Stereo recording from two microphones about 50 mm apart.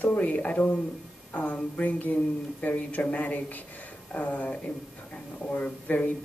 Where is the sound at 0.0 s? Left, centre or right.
Left.